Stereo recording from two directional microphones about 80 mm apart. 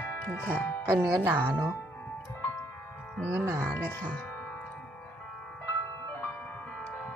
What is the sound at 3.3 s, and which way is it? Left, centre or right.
Speech, right.